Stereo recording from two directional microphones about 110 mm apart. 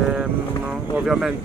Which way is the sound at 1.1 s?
5° right (ahead or behind).